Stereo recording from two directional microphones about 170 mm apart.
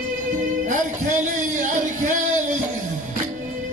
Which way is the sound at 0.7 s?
45° right (ahead or behind).